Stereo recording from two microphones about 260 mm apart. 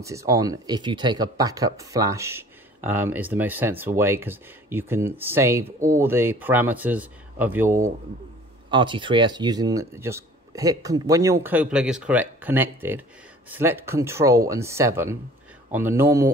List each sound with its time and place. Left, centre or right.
0.0 s speech: centre
8.6 s speech: centre